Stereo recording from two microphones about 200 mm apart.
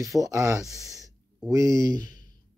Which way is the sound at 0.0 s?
15° right (ahead or behind).